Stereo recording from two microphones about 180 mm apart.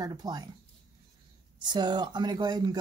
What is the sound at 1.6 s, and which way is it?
A woman's voice, 25° right (ahead or behind).